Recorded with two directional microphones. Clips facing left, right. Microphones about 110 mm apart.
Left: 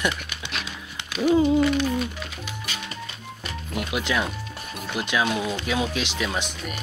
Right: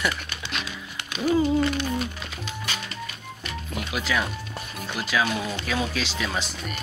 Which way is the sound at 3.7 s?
15° left (ahead or behind).